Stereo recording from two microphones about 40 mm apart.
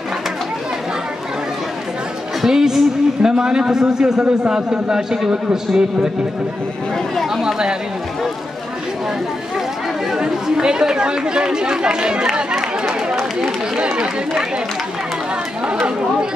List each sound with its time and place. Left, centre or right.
2.4 s a man's voice: centre
7.2 s a man's voice: centre
10.1 s speech: centre
15.6 s speech: right